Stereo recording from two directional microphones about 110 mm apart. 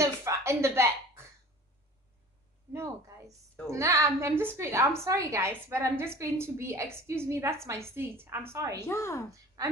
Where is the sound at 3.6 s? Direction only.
30° right (ahead or behind).